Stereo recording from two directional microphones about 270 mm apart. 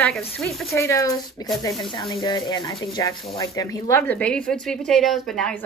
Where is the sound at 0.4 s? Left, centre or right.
Centre.